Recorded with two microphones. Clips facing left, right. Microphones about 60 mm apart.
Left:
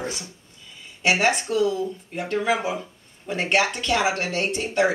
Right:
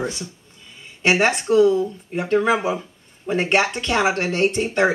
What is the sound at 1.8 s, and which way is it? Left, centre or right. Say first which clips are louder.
Speech: right 3 dB; centre.